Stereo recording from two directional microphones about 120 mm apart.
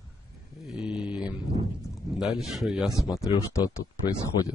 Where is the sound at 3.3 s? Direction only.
30° left (ahead or behind).